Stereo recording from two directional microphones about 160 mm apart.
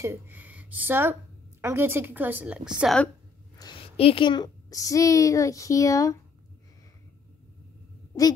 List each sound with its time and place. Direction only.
0.0 s a woman's voice: 15° right (ahead or behind)
3.8 s a woman's voice: 35° left (ahead or behind); by 6.1 s 20° left (ahead or behind)
8.1 s heart sounds: 25° left (ahead or behind)